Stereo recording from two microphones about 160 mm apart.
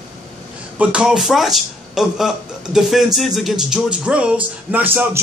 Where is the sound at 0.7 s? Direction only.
5° right (ahead or behind).